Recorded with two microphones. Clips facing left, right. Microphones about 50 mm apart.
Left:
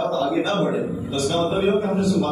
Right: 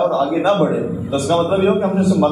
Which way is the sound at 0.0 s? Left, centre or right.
Centre.